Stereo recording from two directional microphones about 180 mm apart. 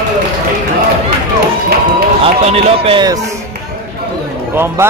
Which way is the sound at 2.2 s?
35° right (ahead or behind).